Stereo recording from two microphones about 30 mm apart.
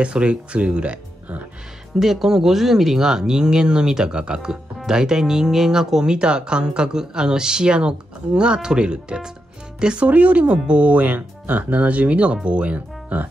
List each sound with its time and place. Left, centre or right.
0.0 s speech: right
2.0 s speech: centre
6.1 s speech: right
10.0 s speech: right
10.5 s speech: right
12.7 s speech: right